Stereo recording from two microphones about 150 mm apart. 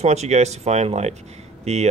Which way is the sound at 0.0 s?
45° right (ahead or behind).